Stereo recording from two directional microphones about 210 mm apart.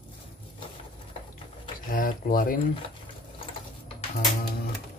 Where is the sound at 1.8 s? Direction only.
40° left (ahead or behind).